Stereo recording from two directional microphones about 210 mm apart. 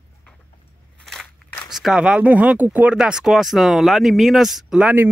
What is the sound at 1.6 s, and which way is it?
Speech, centre (ahead or behind).